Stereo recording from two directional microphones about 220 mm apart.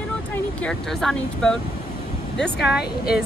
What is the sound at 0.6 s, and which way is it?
Speech, 5° left (ahead or behind).